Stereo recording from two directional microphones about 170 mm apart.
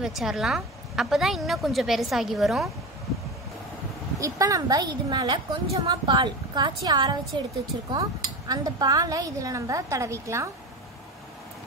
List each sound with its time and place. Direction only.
0.0 s a woman's voice: centre (ahead or behind)
4.2 s a woman's voice: 20° right (ahead or behind)